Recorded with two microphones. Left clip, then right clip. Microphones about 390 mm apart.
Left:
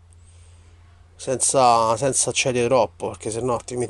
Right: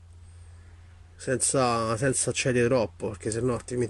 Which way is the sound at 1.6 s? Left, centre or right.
Centre.